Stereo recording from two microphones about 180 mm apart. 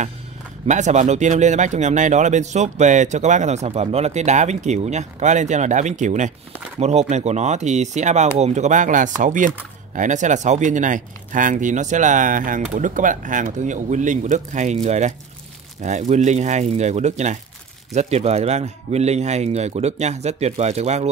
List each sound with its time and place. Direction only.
0.7 s speech: 40° right (ahead or behind)